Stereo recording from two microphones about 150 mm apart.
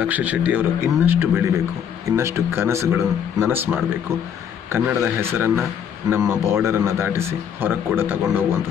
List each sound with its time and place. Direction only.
0.0 s a man's voice: 10° right (ahead or behind)